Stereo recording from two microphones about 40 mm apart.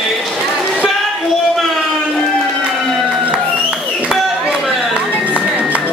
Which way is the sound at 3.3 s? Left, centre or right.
Right.